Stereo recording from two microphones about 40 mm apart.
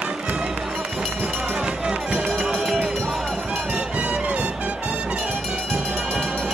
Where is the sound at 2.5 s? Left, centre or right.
Centre.